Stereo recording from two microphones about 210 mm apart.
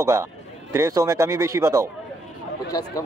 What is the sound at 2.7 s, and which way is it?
Speech, 20° left (ahead or behind).